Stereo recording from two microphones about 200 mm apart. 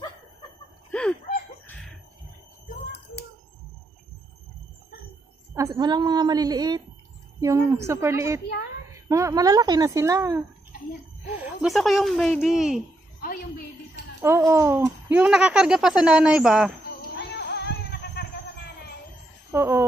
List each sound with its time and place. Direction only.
0.9 s a sound: 5° left (ahead or behind)
5.5 s a woman's voice: 15° right (ahead or behind)
11.4 s speech: centre (ahead or behind)
14.2 s speech: 15° right (ahead or behind)
17.1 s music: 55° left (ahead or behind)
19.5 s speech: 15° right (ahead or behind)